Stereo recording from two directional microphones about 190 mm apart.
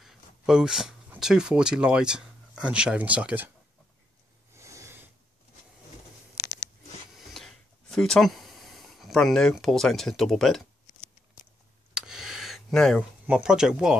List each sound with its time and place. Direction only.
0.0 s speech: centre (ahead or behind)
4.6 s snort: 15° right (ahead or behind)
7.2 s a sound: centre (ahead or behind)